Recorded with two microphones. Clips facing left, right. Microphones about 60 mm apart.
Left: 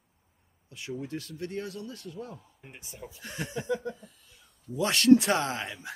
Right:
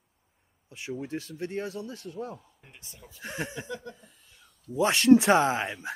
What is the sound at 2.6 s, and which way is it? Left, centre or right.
Speech, centre.